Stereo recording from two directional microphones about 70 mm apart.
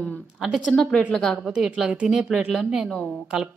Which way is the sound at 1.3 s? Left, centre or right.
Centre.